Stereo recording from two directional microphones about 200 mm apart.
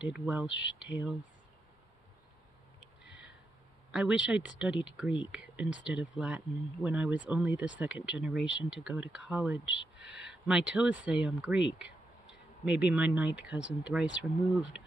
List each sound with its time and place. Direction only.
0.0 s speech: 5° right (ahead or behind)
3.9 s speech: 5° right (ahead or behind)
9.8 s speech: 65° left (ahead or behind)
10.3 s speech: 5° right (ahead or behind)
11.8 s a sound: 5° right (ahead or behind)
13.5 s speech: 5° right (ahead or behind)